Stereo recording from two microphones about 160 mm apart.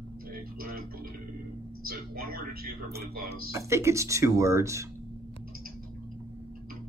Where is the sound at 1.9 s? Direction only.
70° right (ahead or behind).